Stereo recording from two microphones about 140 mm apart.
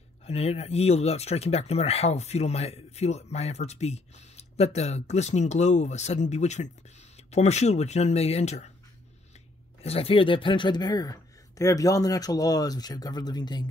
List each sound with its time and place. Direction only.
0.3 s speech: 45° left (ahead or behind)
9.8 s speech: 45° left (ahead or behind); by 13.7 s 30° left (ahead or behind)